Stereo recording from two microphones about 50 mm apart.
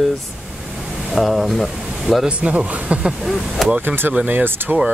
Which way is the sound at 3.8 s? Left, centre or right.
Right.